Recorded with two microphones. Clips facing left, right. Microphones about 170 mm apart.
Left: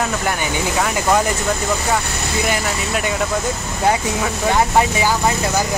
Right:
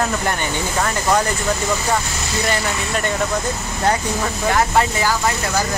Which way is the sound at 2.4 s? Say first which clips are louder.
Right 1 dB; 10° left (ahead or behind).